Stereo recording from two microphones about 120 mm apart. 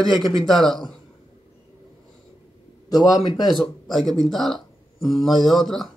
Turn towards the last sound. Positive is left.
turn(degrees=5)  # may be behind; listen again after turning